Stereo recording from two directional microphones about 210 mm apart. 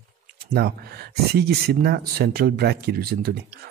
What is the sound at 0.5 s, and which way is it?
Speech, 50° right (ahead or behind).